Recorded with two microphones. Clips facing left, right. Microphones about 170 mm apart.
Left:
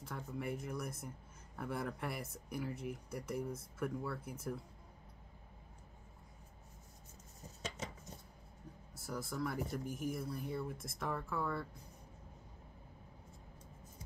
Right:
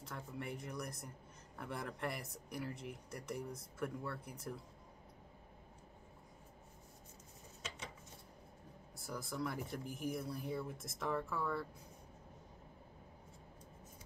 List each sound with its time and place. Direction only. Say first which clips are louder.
0.0 s speech: left 3 dB; centre (ahead or behind)
7.6 s dishes: left 5 dB; 45° left (ahead or behind)
8.9 s speech: left 2 dB; centre (ahead or behind)